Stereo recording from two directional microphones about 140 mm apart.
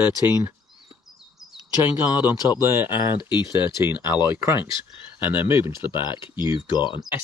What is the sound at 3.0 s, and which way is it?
Speech, 35° left (ahead or behind).